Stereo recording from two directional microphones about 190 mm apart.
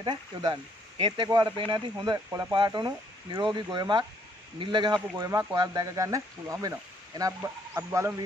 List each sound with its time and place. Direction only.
0.0 s speech: 25° right (ahead or behind)